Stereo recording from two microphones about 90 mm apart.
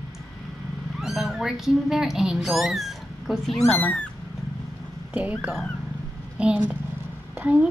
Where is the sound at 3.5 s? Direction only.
30° left (ahead or behind).